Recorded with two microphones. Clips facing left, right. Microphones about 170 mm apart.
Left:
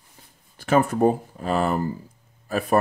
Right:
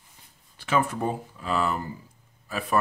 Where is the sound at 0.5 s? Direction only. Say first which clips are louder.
Left 5 dB; 45° left (ahead or behind).